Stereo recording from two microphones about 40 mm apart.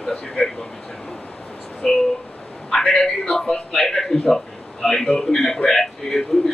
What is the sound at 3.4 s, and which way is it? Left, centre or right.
Speech, left.